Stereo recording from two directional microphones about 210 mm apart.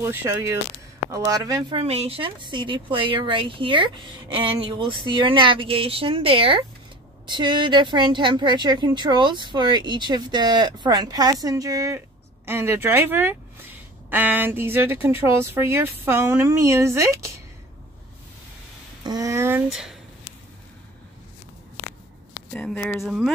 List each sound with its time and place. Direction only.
0.0 s a woman's voice: 10° right (ahead or behind)
19.0 s speech: 15° right (ahead or behind)
22.5 s speech: 5° left (ahead or behind)